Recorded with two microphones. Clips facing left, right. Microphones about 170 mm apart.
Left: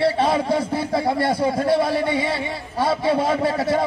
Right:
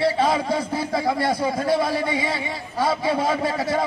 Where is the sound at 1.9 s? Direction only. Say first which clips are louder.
Left 3 dB; 60° left (ahead or behind).